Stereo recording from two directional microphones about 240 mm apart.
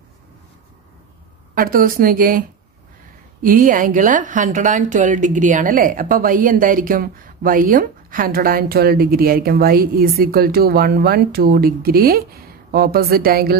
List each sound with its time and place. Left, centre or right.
1.5 s speech: right
3.4 s speech: right